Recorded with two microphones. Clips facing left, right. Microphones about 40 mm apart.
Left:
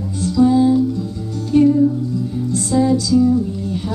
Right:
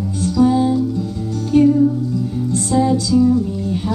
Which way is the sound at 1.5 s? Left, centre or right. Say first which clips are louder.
Even; centre.